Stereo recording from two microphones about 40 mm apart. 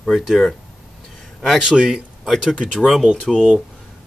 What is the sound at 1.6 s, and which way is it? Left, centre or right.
Speech, centre.